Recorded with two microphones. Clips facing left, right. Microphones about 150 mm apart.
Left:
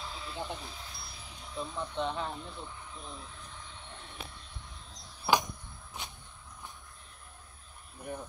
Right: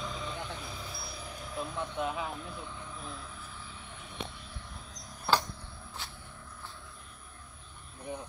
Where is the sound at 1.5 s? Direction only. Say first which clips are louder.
Right 1 dB; 5° right (ahead or behind).